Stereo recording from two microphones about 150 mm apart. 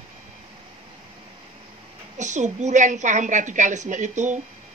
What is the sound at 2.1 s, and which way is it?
A woman's voice, 55° right (ahead or behind).